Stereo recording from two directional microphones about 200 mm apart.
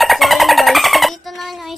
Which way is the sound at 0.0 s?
Centre (ahead or behind).